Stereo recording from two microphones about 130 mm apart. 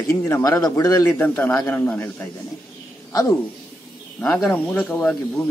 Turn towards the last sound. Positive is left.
turn(degrees=5)  # may be behind; listen again after turning